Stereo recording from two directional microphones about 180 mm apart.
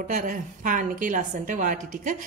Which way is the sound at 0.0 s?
50° right (ahead or behind).